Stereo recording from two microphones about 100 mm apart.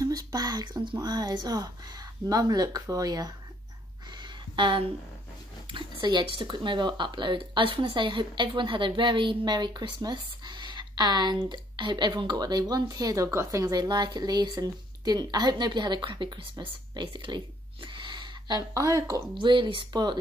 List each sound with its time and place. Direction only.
0.0 s speech: 40° right (ahead or behind)
4.2 s a sound: 55° right (ahead or behind)
5.7 s speech: 55° right (ahead or behind)
17.9 s a sound: 50° right (ahead or behind)
18.8 s speech: 30° left (ahead or behind)
19.3 s speech: 55° right (ahead or behind)